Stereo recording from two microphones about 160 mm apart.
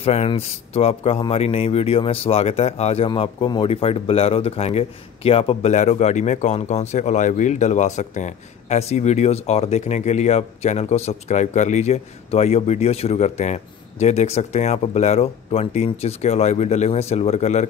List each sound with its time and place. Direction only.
0.0 s speech: 40° left (ahead or behind)